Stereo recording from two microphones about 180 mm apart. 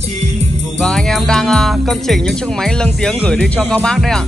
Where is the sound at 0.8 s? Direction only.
5° left (ahead or behind).